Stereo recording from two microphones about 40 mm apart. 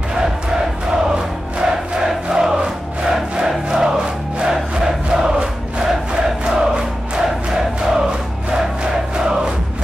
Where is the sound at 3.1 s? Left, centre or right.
Centre.